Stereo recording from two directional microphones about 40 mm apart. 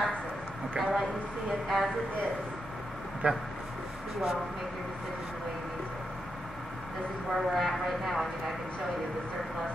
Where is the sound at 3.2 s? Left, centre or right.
Right.